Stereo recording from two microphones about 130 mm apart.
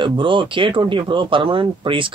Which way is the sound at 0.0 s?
40° right (ahead or behind).